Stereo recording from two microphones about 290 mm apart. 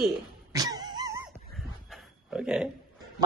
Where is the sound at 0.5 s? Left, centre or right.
Centre.